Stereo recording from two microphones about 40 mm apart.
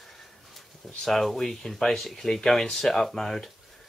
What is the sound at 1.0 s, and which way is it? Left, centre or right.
Speech, centre.